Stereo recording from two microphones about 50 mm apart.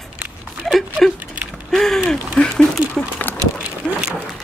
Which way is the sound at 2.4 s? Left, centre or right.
Left.